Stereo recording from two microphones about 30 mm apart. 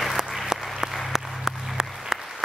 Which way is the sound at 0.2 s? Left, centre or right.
Centre.